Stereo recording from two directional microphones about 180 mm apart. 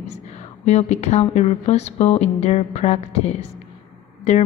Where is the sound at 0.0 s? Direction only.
40° left (ahead or behind).